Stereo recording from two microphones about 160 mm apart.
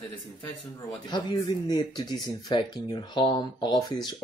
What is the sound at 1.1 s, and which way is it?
Speech, 25° left (ahead or behind).